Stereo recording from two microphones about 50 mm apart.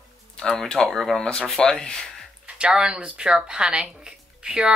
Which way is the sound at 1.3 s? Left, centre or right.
Centre.